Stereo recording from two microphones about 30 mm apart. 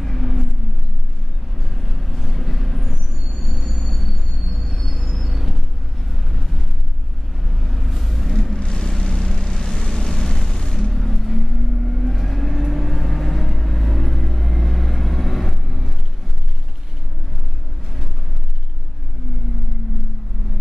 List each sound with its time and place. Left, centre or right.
0.0 s vehicle: centre
1.6 s vehicle: centre
4.9 s train: centre
6.3 s vehicle: centre
8.5 s vehicle: left
10.9 s vehicle: centre